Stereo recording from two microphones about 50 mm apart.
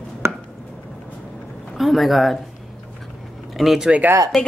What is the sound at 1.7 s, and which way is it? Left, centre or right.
Speech, centre.